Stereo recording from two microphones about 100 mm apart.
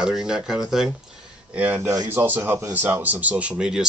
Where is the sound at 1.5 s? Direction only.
20° right (ahead or behind).